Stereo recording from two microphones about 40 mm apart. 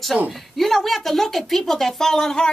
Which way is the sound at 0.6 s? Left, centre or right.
Centre.